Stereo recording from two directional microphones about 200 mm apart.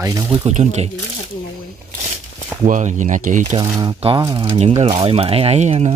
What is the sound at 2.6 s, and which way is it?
Speech, 40° right (ahead or behind).